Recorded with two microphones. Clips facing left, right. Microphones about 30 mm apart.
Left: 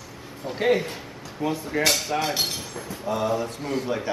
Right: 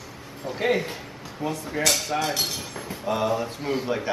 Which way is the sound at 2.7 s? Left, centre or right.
Centre.